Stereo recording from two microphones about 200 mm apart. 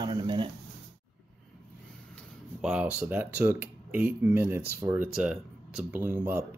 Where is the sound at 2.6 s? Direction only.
5° right (ahead or behind).